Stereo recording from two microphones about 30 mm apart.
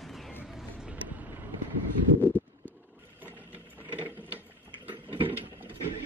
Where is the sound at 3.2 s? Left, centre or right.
Right.